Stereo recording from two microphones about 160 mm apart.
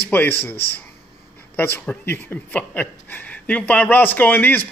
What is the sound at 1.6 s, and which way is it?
Speech, 10° left (ahead or behind).